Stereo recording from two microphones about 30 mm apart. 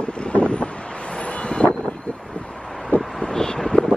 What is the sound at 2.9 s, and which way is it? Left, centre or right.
Vehicle, left.